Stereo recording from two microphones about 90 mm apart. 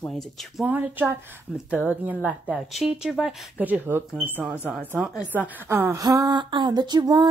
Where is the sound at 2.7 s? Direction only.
5° right (ahead or behind).